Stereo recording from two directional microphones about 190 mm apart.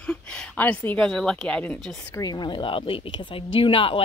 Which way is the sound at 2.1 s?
20° left (ahead or behind).